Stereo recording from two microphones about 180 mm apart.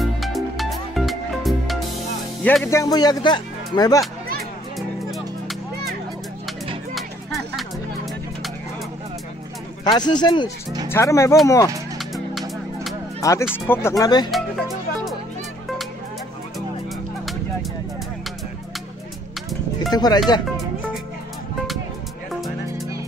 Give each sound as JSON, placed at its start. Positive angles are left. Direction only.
{"t": 0.0, "sound": "music", "side_deg": 0}
{"t": 2.4, "sound": "speech", "side_deg": 10}
{"t": 4.7, "sound": "music", "side_deg": 0}
{"t": 7.0, "sound": "music", "side_deg": 0}
{"t": 9.8, "sound": "speech", "side_deg": 25}
{"t": 12.0, "sound": "music", "side_deg": 0}
{"t": 13.2, "sound": "speech", "side_deg": 20}
{"t": 19.9, "sound": "speech", "side_deg": 20}